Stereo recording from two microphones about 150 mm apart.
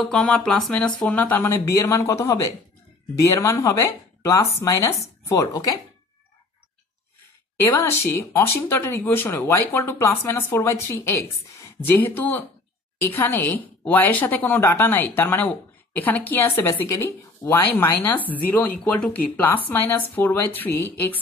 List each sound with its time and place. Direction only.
0.0 s speech: 5° left (ahead or behind); by 5.8 s 25° left (ahead or behind)
7.5 s speech: 15° left (ahead or behind)